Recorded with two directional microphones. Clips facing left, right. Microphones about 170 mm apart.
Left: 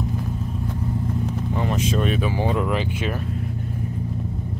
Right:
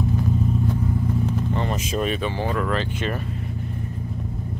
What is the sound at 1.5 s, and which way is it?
Vehicle, 5° left (ahead or behind).